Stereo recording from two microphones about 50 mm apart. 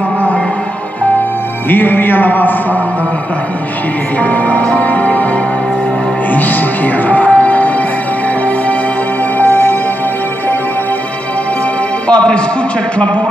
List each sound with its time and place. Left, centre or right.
1.7 s a man's voice: left
4.2 s a man's voice: left
4.7 s music: left
6.3 s speech: left
9.4 s music: left
12.1 s a man's voice: left